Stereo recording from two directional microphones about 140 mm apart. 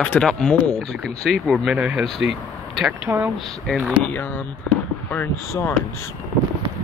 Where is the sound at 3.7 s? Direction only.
10° left (ahead or behind).